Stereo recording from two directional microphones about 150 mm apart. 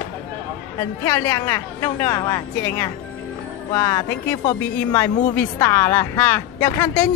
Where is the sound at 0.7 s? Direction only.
15° left (ahead or behind).